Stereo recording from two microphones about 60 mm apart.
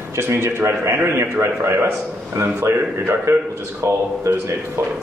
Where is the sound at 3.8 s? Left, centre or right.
Right.